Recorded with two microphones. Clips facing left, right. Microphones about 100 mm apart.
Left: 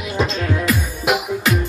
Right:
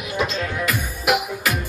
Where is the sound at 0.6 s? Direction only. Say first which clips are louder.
Left 1 dB; 30° left (ahead or behind).